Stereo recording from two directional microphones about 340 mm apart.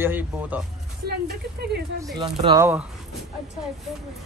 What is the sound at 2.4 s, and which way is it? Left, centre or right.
Speech, centre.